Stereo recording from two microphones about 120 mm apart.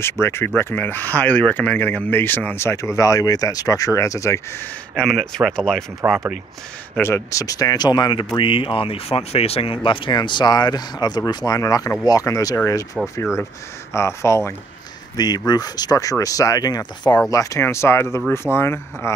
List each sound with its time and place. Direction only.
0.0 s speech: 20° left (ahead or behind)
4.9 s speech: 5° left (ahead or behind)
6.0 s speech: 15° right (ahead or behind)
7.0 s speech: 20° left (ahead or behind)
15.1 s speech: 35° left (ahead or behind)